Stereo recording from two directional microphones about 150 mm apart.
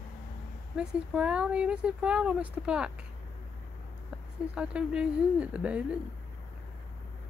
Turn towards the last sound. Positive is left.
turn(degrees=-10)  # may be behind; listen again after turning